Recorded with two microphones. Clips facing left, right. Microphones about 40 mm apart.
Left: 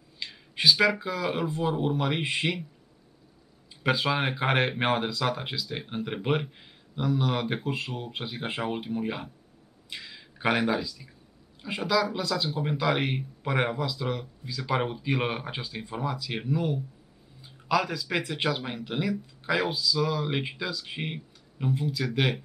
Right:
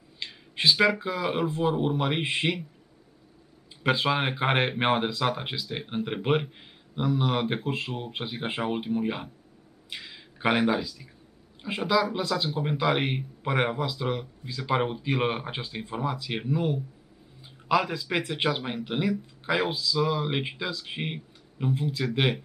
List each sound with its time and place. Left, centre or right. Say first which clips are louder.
0.2 s speech: even; centre
3.8 s speech: right 1 dB; centre
17.4 s a sound: right 1 dB; centre
18.1 s speech: right 1 dB; centre